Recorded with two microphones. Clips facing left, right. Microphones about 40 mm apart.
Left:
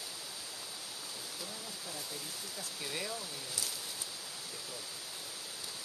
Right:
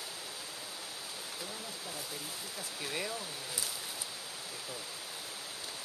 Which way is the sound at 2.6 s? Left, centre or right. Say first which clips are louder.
Right 2 dB; centre.